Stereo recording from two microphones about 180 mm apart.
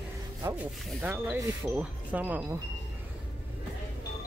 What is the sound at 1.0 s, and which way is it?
Speech, 10° right (ahead or behind).